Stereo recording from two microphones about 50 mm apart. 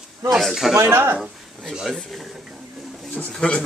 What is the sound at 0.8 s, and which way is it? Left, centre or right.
Speech, right.